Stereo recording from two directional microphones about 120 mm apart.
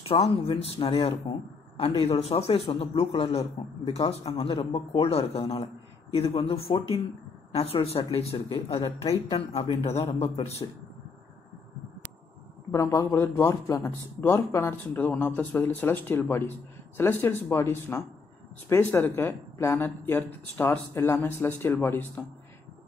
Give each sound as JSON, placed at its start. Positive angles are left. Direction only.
{"t": 0.0, "sound": "a man's voice", "side_deg": 55}
{"t": 12.7, "sound": "speech", "side_deg": 25}
{"t": 13.7, "sound": "speech", "side_deg": 25}